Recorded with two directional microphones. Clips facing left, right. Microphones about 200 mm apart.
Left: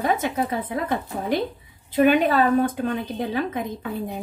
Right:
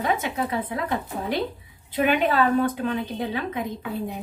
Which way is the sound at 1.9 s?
45° left (ahead or behind).